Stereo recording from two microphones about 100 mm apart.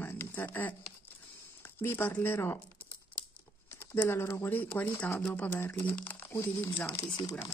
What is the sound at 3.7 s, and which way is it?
Speech, 20° left (ahead or behind).